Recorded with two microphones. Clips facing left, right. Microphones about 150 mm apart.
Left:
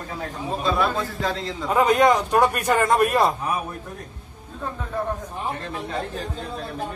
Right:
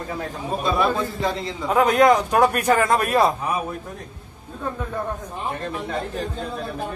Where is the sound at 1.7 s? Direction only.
Centre (ahead or behind).